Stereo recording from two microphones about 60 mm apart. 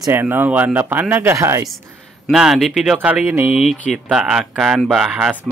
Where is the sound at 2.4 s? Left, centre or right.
Centre.